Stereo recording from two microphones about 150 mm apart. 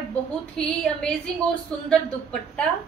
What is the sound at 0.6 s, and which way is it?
Speech, 5° left (ahead or behind).